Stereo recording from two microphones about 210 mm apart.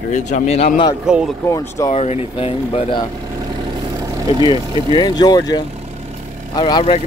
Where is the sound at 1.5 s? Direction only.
15° left (ahead or behind).